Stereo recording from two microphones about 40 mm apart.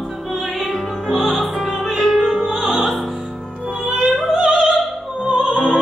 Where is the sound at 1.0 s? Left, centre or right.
Centre.